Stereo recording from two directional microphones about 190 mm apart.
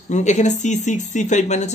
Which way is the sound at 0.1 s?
40° left (ahead or behind).